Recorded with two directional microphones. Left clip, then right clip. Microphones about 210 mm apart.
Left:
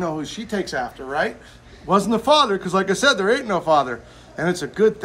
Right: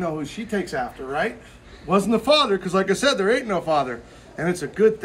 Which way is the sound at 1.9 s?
10° left (ahead or behind).